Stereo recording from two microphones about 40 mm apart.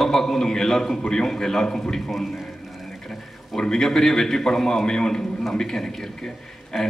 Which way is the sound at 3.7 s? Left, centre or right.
Centre.